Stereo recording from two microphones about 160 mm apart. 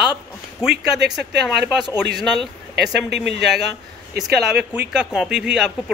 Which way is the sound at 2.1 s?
Centre (ahead or behind).